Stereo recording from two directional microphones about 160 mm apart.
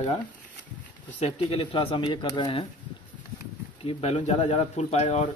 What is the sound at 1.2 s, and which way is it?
Speech, 30° left (ahead or behind).